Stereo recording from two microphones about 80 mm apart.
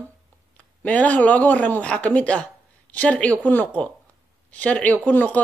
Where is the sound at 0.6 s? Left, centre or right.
Centre.